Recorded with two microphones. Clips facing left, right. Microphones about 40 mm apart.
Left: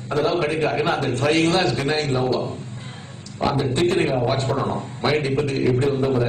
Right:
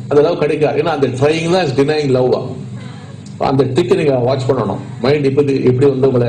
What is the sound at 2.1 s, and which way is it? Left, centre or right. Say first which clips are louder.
Speech: right 8 dB; centre.